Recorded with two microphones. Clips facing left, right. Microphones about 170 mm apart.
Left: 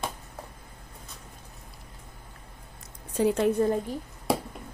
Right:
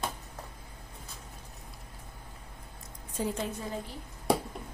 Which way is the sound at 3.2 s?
70° left (ahead or behind).